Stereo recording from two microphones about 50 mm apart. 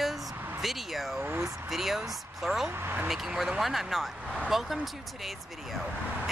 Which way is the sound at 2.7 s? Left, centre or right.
Right.